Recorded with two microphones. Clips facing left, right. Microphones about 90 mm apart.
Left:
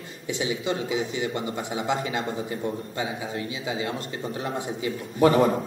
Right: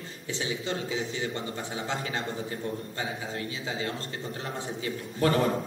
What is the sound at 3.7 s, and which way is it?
A man's voice, 15° left (ahead or behind).